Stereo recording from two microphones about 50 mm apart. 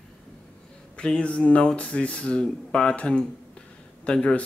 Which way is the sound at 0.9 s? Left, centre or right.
Left.